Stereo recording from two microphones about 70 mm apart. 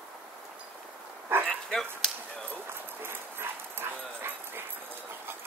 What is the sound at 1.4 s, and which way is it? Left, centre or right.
Bow-wow, centre.